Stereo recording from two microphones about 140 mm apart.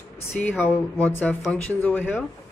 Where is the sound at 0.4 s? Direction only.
15° left (ahead or behind).